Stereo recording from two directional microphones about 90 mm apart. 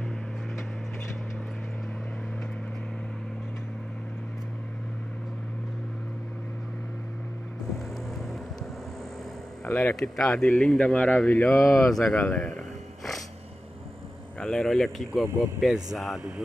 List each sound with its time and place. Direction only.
9.7 s speech: 30° left (ahead or behind)
10.0 s speech: 5° left (ahead or behind)
14.4 s speech: 5° left (ahead or behind)